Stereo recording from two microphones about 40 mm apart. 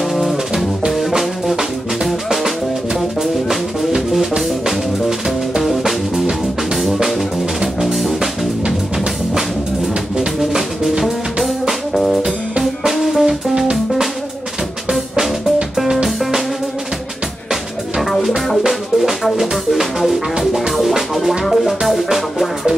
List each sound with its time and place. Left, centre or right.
0.1 s music: centre
5.6 s music: centre
7.1 s drum kit: centre
8.6 s music: right
10.1 s music: centre
11.9 s music: centre
15.7 s music: centre
18.7 s music: centre